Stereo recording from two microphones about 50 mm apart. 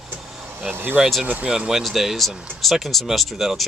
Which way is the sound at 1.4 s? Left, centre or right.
Centre.